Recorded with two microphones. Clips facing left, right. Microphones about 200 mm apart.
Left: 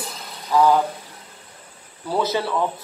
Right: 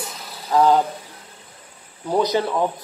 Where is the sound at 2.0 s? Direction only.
15° right (ahead or behind).